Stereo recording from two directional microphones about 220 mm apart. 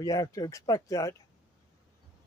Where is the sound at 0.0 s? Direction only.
15° left (ahead or behind).